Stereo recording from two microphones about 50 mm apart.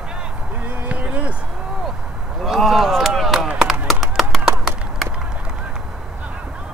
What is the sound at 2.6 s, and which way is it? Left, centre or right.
Chop, centre.